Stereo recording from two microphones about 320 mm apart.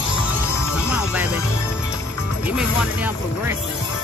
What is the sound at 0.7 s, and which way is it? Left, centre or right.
Speech, centre.